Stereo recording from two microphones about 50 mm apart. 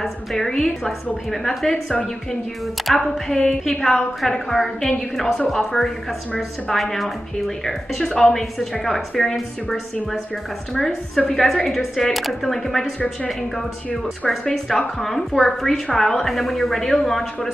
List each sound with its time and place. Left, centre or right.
0.0 s a woman's voice: centre
11.1 s a woman's voice: centre
14.5 s a woman's voice: centre